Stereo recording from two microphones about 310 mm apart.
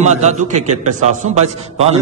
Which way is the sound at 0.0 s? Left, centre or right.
Right.